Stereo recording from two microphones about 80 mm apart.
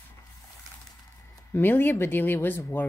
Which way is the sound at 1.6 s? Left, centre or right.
Left.